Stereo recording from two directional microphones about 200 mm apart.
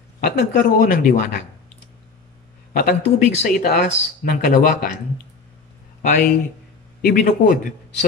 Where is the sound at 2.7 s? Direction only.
40° left (ahead or behind).